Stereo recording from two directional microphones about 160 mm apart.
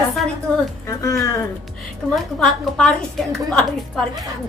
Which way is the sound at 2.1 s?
Centre (ahead or behind).